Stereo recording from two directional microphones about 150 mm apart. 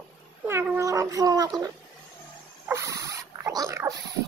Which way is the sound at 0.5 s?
15° right (ahead or behind).